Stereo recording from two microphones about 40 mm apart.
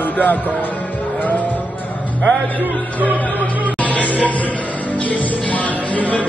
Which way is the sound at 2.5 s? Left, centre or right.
Left.